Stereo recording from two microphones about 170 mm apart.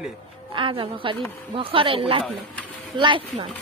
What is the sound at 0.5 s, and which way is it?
A woman's voice, 30° right (ahead or behind).